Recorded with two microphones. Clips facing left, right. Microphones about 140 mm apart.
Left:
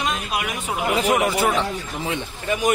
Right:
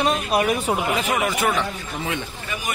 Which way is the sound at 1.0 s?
15° left (ahead or behind).